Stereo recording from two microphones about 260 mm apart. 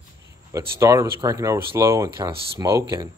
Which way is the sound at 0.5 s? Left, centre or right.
Centre.